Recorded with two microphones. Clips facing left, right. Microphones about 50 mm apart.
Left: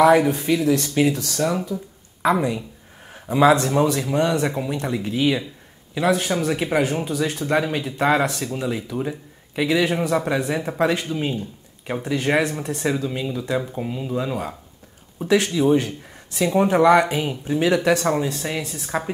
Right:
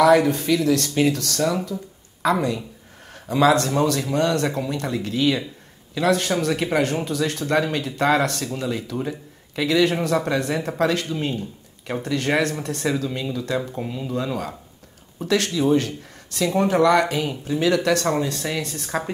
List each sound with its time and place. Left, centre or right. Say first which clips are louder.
0.0 s speech: left 1 dB; centre